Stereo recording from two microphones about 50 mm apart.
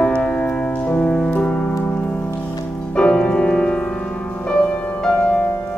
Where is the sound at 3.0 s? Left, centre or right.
Centre.